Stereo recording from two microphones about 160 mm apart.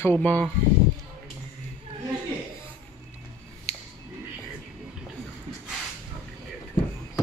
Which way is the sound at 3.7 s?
40° left (ahead or behind).